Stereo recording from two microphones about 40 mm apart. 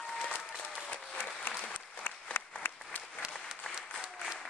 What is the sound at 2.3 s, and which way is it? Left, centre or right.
Applause, left.